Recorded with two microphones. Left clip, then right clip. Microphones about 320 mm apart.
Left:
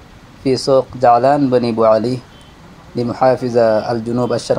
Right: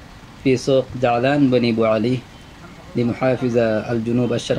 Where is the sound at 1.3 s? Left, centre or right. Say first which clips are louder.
Left 3 dB; left.